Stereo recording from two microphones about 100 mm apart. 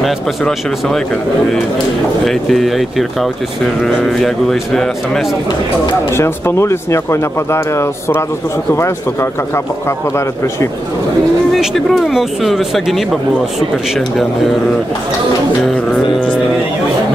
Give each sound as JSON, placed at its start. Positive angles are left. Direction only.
{"t": 0.0, "sound": "a man's voice", "side_deg": 0}
{"t": 2.2, "sound": "a man's voice", "side_deg": 0}
{"t": 6.1, "sound": "speech", "side_deg": 25}
{"t": 11.5, "sound": "a man's voice", "side_deg": 0}
{"t": 15.6, "sound": "a man's voice", "side_deg": 5}